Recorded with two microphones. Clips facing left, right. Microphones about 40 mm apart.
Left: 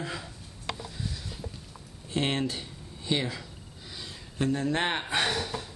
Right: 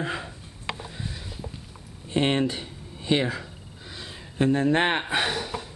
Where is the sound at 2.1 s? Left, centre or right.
Centre.